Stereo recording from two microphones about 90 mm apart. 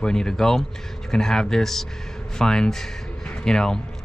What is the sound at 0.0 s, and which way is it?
Speech, 10° left (ahead or behind).